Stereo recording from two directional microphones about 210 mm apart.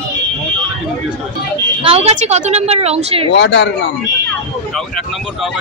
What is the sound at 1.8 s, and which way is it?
Speech, 30° right (ahead or behind).